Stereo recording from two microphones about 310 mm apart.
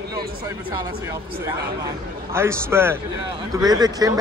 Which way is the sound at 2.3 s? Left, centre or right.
Centre.